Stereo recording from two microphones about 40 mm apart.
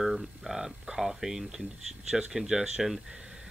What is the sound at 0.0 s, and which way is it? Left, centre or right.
Speech, centre.